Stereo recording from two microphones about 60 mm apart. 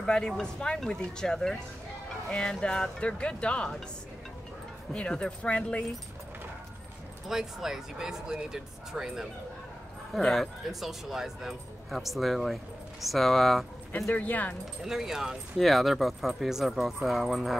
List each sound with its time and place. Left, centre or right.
0.0 s speech: centre
2.6 s speech: centre
4.9 s speech: centre
7.2 s speech: centre
10.2 s speech: centre
14.1 s speech: left
14.8 s speech: centre